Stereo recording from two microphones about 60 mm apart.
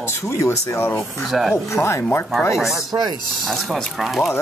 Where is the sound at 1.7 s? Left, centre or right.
Left.